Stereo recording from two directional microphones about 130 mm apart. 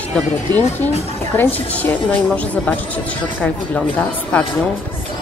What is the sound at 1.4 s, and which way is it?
A woman's voice, 15° left (ahead or behind).